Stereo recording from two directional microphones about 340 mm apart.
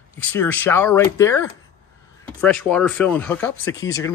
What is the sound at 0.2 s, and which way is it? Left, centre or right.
Speech, centre.